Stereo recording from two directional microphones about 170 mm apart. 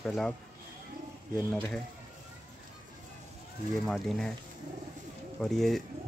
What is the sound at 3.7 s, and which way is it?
Speech, 5° left (ahead or behind).